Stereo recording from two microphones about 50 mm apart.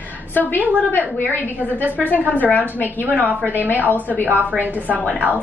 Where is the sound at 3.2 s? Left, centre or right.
Right.